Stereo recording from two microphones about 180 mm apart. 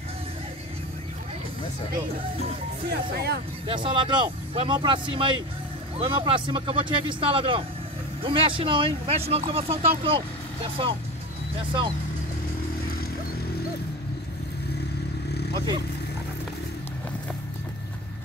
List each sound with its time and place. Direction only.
2.9 s speech: 60° right (ahead or behind)
3.6 s speech: 25° right (ahead or behind)
15.5 s speech: 25° right (ahead or behind)